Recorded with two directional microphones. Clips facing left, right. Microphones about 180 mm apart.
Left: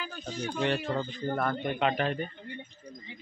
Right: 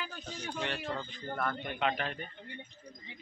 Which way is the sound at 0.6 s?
35° left (ahead or behind).